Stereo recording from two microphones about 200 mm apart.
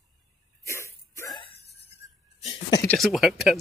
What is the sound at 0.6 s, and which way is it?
Hiccup, 15° left (ahead or behind).